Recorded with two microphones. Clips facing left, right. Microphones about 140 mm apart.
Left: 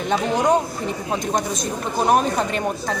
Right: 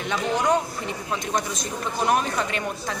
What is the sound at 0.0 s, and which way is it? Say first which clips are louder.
A woman's voice: left 4 dB; 35° left (ahead or behind).